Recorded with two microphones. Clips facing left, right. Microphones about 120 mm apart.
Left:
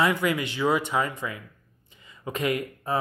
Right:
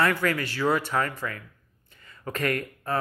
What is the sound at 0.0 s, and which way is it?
A man's voice, 15° left (ahead or behind).